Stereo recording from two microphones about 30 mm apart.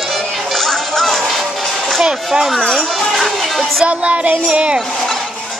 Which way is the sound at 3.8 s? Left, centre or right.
Right.